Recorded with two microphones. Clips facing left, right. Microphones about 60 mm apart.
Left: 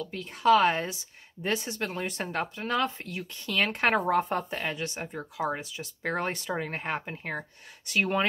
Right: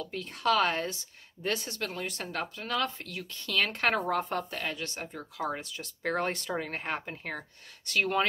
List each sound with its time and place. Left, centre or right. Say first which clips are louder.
0.0 s speech: left 5 dB; centre